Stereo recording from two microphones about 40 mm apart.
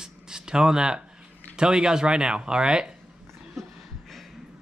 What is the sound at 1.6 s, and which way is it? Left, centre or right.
Speech, right.